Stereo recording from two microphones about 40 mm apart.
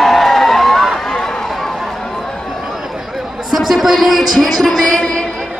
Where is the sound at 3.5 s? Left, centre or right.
Centre.